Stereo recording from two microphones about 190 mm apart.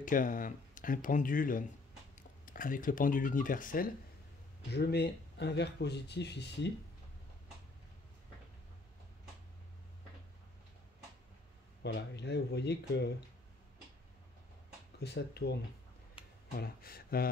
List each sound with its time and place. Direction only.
0.0 s speech: 45° left (ahead or behind)
4.7 s speech: 60° left (ahead or behind)
11.8 s speech: 65° left (ahead or behind)
15.0 s speech: 60° left (ahead or behind)